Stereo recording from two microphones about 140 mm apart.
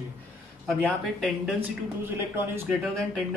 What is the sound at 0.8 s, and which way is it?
Speech, centre (ahead or behind).